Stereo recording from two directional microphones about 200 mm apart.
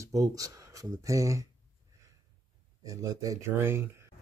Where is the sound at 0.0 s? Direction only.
15° right (ahead or behind).